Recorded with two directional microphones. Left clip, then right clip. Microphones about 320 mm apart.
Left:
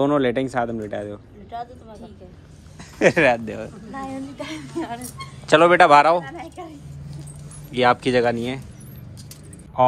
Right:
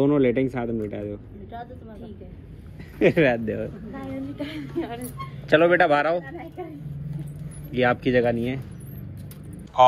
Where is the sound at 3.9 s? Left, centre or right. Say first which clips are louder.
Left 4 dB; left.